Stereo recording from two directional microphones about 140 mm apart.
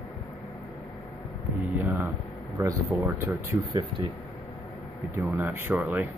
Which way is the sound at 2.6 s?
20° right (ahead or behind).